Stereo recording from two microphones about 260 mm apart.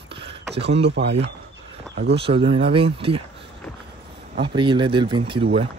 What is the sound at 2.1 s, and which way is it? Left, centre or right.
Speech, right.